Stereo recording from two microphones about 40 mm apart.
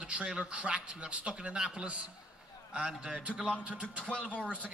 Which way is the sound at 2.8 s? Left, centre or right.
Centre.